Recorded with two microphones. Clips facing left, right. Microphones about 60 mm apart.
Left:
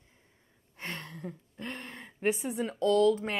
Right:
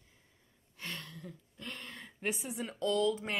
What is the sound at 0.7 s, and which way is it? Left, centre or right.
Gasp, left.